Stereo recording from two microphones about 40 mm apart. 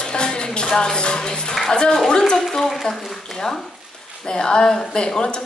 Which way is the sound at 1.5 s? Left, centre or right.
Centre.